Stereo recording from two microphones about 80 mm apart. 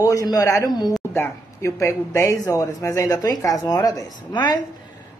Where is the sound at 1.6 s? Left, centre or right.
Left.